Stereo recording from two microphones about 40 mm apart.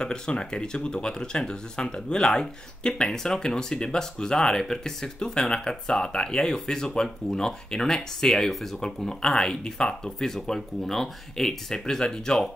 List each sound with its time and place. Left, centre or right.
0.0 s speech: left
8.5 s speech: centre
8.8 s speech: centre